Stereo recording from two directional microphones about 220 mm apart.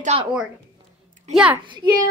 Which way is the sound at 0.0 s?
30° right (ahead or behind).